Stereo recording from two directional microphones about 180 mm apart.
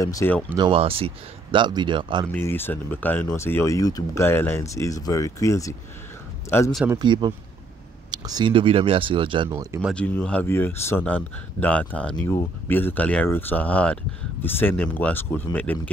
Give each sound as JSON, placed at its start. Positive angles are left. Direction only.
{"t": 0.0, "sound": "speech", "side_deg": 15}
{"t": 0.6, "sound": "speech", "side_deg": -30}
{"t": 2.3, "sound": "speech", "side_deg": 10}
{"t": 7.0, "sound": "speech", "side_deg": -25}
{"t": 9.5, "sound": "speech", "side_deg": -15}
{"t": 9.9, "sound": "speech", "side_deg": 5}